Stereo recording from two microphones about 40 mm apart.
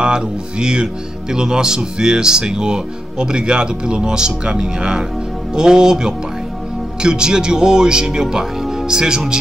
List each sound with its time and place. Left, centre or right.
0.0 s speech: right